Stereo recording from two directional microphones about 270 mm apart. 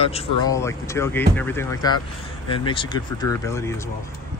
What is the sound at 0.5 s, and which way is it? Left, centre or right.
Speech, centre.